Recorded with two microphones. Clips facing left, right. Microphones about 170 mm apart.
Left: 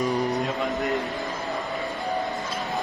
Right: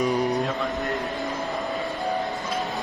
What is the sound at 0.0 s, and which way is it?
Music, centre (ahead or behind).